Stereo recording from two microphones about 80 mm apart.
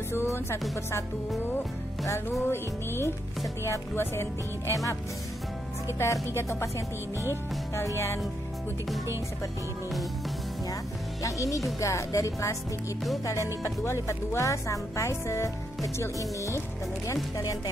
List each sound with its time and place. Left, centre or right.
0.1 s speech: left
2.4 s music: left
3.6 s speech: left
5.9 s speech: left
11.2 s speech: left